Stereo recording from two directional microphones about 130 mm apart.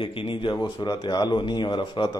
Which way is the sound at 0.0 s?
45° left (ahead or behind).